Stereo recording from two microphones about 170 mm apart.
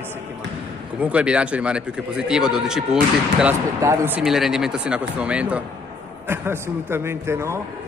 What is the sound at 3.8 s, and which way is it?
A man's voice, 15° right (ahead or behind).